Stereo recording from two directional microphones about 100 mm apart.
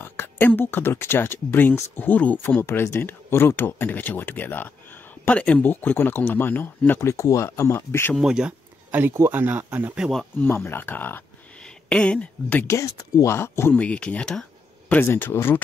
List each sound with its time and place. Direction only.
0.0 s speech: 20° left (ahead or behind)
7.0 s speech: 35° left (ahead or behind)
8.2 s speech: 5° right (ahead or behind)
10.4 s speech: 20° left (ahead or behind)
12.6 s speech: 30° left (ahead or behind)
13.7 s speech: 10° left (ahead or behind)
14.9 s speech: 20° left (ahead or behind)